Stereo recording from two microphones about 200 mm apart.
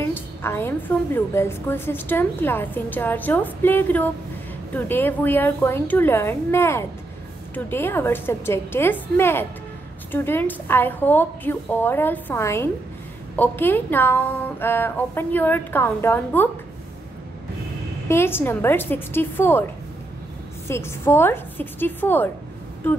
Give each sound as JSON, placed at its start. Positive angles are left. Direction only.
{"t": 0.0, "sound": "a woman's voice", "side_deg": 10}
{"t": 18.0, "sound": "a woman's voice", "side_deg": 10}
{"t": 20.6, "sound": "a woman's voice", "side_deg": 15}